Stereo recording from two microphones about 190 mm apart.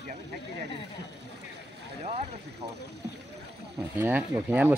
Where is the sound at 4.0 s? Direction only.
10° right (ahead or behind).